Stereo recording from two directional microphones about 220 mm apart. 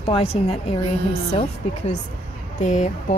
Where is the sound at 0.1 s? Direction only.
25° left (ahead or behind).